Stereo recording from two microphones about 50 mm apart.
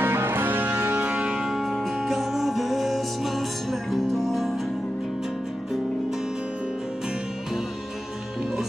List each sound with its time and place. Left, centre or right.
0.0 s music: right
1.0 s music: right
1.5 s music: centre